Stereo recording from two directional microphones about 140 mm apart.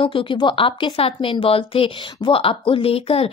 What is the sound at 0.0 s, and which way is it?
A woman's voice, 40° left (ahead or behind).